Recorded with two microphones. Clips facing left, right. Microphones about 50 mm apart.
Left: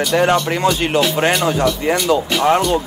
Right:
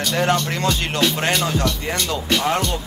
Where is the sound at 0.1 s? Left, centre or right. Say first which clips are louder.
Left 4 dB; centre.